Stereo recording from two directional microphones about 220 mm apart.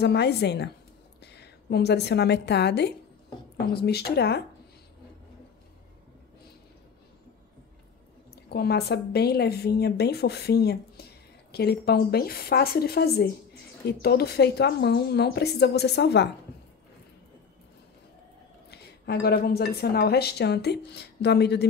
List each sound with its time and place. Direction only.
0.0 s a woman's voice: 50° left (ahead or behind)
8.5 s a woman's voice: 45° left (ahead or behind)
18.7 s a woman's voice: 45° left (ahead or behind)